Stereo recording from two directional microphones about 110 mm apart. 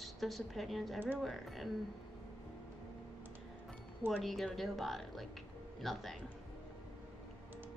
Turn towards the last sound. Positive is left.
turn(degrees=0)  # may be behind; listen again after turning